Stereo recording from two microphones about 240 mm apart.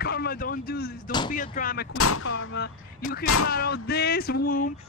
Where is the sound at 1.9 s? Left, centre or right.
Left.